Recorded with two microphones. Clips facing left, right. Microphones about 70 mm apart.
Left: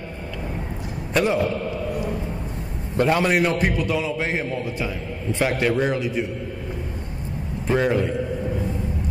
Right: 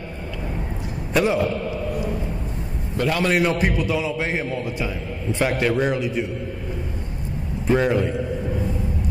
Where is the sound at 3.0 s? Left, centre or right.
Left.